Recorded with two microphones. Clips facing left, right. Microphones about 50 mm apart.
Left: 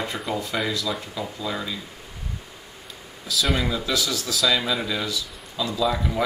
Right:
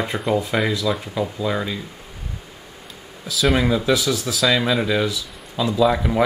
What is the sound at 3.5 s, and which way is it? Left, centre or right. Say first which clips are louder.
Speech: right 7 dB; right.